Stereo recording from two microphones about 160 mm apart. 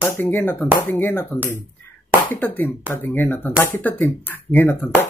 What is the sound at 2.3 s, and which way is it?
Speech, 10° left (ahead or behind).